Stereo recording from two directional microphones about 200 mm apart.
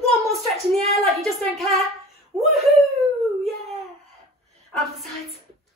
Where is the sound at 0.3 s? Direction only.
Centre (ahead or behind).